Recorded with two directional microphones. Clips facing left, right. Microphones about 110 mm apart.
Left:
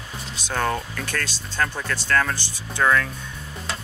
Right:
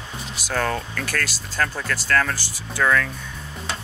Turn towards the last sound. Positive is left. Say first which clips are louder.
# even
turn(degrees=35)  # may be behind; listen again after turning